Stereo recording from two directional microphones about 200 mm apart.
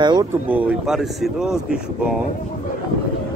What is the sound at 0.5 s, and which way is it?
Speech, 10° right (ahead or behind).